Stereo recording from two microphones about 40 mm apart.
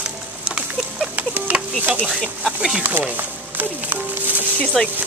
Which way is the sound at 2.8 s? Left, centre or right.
Right.